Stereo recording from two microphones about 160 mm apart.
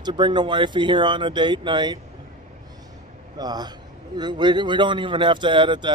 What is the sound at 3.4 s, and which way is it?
A man's voice, 25° right (ahead or behind).